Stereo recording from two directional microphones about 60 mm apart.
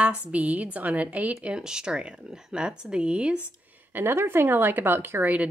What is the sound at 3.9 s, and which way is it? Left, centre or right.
Speech, right.